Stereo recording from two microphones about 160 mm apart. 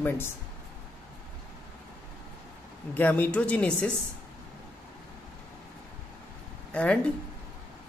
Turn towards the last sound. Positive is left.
turn(degrees=10)  # may be behind; listen again after turning